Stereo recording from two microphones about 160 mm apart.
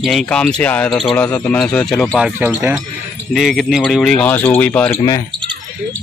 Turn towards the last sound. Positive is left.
turn(degrees=10)  # may be behind; listen again after turning